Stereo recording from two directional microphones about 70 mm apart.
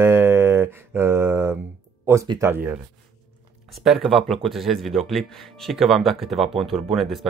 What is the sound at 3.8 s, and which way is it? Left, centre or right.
Speech, centre.